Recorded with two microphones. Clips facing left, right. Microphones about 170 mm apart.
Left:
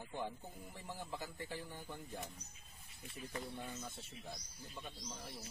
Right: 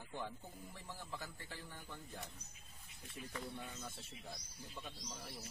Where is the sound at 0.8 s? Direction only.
15° left (ahead or behind).